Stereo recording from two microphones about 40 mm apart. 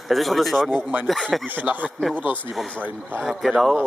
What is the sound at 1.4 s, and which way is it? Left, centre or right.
Speech, right.